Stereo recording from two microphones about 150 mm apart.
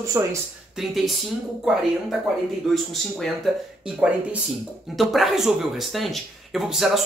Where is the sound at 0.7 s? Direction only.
Centre (ahead or behind).